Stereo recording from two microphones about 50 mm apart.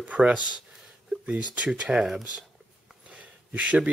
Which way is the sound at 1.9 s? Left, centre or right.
Centre.